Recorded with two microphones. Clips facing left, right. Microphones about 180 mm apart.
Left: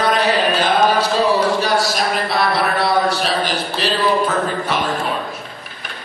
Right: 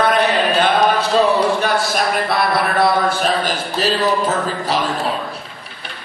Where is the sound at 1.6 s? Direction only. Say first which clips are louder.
Even; 55° right (ahead or behind).